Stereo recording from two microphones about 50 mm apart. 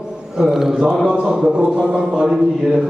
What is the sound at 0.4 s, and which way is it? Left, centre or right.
A man's voice, centre.